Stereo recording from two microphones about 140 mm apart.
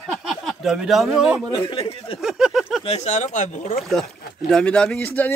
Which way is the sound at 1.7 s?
40° left (ahead or behind).